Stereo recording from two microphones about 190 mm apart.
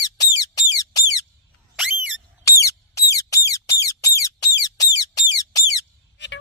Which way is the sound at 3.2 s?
15° left (ahead or behind).